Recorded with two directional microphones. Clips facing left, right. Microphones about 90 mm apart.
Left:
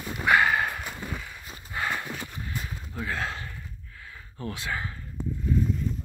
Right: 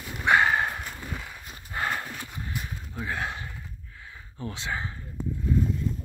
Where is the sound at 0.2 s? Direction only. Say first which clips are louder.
Even; 30° right (ahead or behind).